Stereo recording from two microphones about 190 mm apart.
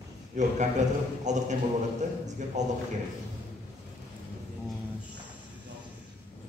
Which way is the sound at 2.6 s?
40° right (ahead or behind).